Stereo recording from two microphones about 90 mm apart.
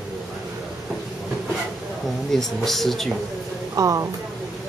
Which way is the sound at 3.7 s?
40° right (ahead or behind).